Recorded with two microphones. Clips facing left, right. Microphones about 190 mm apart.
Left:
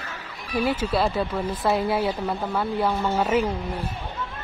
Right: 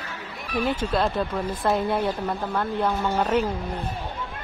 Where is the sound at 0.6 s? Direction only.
5° left (ahead or behind).